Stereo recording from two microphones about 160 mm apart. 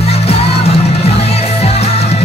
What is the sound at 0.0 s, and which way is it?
Music, 40° left (ahead or behind).